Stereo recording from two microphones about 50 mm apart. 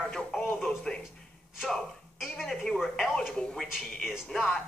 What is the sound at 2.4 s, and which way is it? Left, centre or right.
Speech, centre.